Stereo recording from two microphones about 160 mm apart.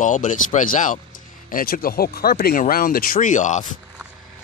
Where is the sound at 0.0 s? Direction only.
50° left (ahead or behind).